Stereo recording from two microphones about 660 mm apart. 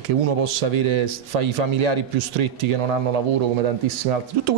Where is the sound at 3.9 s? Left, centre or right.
Right.